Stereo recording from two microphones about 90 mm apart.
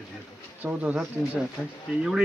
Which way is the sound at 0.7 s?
20° right (ahead or behind).